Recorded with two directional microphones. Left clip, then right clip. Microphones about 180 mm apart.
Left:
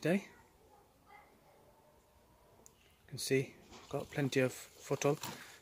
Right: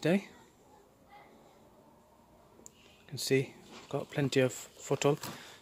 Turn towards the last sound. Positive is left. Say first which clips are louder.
# right 4 dB
turn(degrees=-5)  # may be behind; listen again after turning